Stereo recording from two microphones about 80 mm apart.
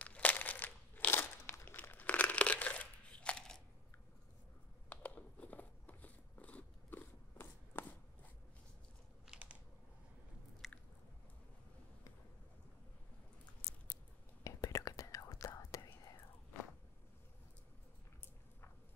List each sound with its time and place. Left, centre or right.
0.0 s a sound: centre
4.8 s biting: centre
9.3 s a sound: centre
10.6 s biting: centre
13.6 s biting: left
14.4 s whispering: left